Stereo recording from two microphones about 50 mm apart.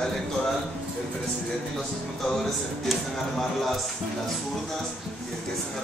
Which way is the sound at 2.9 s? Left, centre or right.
Centre.